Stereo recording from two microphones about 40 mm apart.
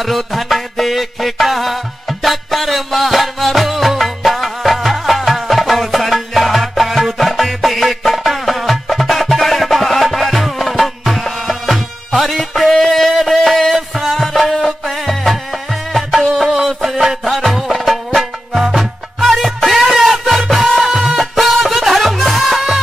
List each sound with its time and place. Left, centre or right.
0.0 s music: centre
12.7 s a sound: centre
13.6 s music: centre
16.3 s music: centre
16.6 s music: centre
17.7 s music: centre